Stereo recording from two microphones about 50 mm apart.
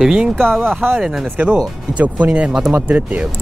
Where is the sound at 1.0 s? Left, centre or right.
Centre.